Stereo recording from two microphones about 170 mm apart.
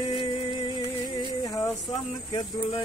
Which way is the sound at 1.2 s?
20° left (ahead or behind).